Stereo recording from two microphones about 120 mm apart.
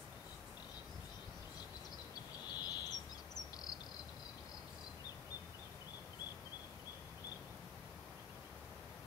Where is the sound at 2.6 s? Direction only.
35° left (ahead or behind).